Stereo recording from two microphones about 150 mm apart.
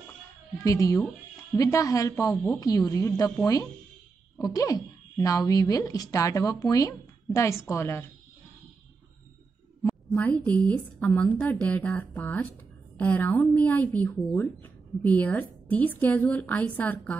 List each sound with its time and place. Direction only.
0.7 s a woman's voice: 20° left (ahead or behind)
4.4 s speech: 25° left (ahead or behind)
9.8 s speech: 10° left (ahead or behind)